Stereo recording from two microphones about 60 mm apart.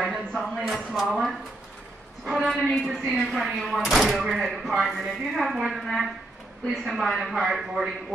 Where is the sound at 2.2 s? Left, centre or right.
Centre.